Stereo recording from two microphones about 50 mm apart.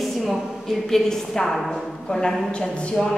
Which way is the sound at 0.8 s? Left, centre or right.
Centre.